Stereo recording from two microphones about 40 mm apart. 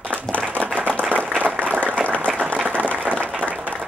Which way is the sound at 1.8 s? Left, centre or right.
Left.